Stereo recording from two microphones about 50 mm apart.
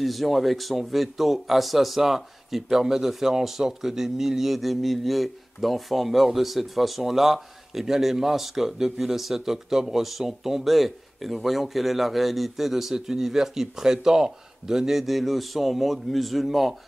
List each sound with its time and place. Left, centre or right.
0.0 s speech: centre